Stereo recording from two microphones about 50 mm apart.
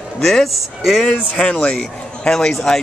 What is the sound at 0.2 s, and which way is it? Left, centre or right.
Speech, centre.